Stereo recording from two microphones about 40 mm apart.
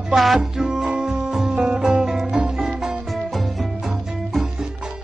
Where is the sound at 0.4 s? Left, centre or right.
Centre.